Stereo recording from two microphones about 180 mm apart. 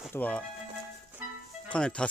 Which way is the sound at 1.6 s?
5° left (ahead or behind).